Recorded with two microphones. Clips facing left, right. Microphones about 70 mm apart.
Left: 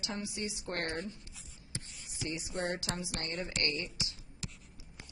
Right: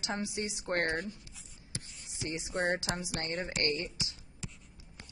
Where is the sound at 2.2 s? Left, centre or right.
Right.